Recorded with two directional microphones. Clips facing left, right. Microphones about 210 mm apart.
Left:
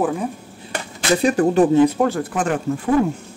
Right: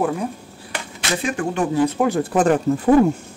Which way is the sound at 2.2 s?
35° right (ahead or behind).